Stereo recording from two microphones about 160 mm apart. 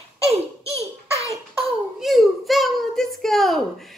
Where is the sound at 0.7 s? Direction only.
20° left (ahead or behind).